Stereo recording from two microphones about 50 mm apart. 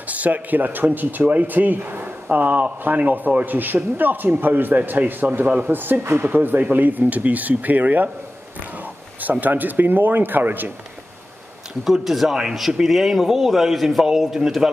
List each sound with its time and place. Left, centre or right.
0.1 s speech: right
9.2 s speech: right
11.8 s a man's voice: centre